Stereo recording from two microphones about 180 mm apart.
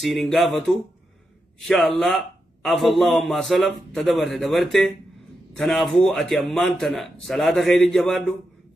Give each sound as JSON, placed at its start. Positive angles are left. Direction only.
{"t": 0.0, "sound": "a man's voice", "side_deg": 0}